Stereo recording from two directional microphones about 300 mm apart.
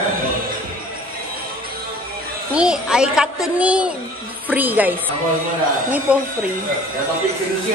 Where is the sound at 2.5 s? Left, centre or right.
Centre.